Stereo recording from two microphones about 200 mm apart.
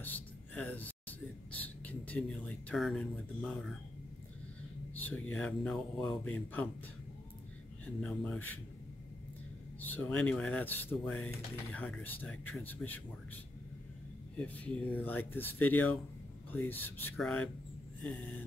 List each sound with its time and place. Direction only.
0.0 s a sound: 10° left (ahead or behind)
1.9 s speech: 5° left (ahead or behind)
4.9 s speech: 10° left (ahead or behind)
7.8 s speech: 5° left (ahead or behind)
9.8 s speech: 10° left (ahead or behind)
14.4 s speech: 5° left (ahead or behind)